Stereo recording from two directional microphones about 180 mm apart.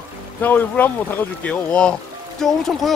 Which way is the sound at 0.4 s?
10° left (ahead or behind).